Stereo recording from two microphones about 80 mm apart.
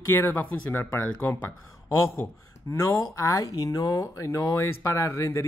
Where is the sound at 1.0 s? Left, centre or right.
Left.